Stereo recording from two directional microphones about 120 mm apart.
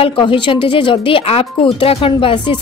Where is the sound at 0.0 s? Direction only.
45° left (ahead or behind).